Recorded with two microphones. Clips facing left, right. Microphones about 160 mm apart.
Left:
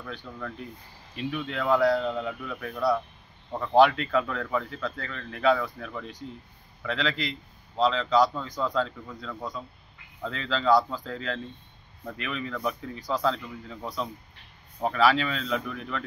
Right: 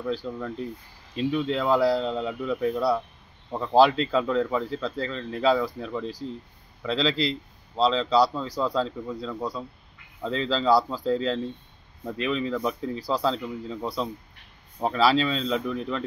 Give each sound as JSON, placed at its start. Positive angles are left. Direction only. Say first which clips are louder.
{"t": 0.0, "sound": "a man's voice", "louder": "right 8 dB", "side_deg": -30}